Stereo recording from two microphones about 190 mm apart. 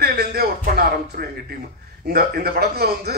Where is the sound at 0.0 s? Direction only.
55° right (ahead or behind).